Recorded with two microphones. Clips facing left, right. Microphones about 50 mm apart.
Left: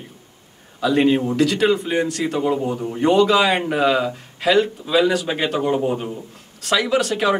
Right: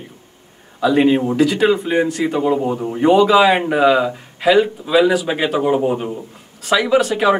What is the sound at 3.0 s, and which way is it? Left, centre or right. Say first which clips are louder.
A man's voice: right 4 dB; centre.